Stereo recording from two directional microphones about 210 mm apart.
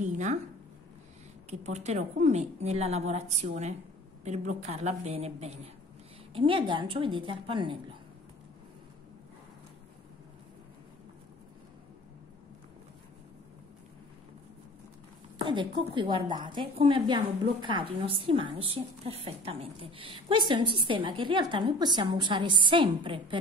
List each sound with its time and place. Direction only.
0.0 s speech: 35° right (ahead or behind)
1.5 s a woman's voice: 30° right (ahead or behind)
15.3 s a woman's voice: 25° right (ahead or behind)